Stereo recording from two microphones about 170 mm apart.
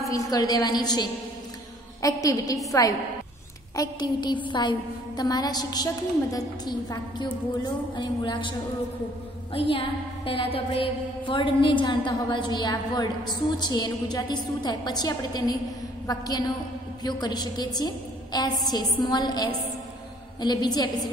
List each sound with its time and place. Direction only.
0.1 s a woman's voice: 20° left (ahead or behind)
3.7 s a woman's voice: 20° left (ahead or behind)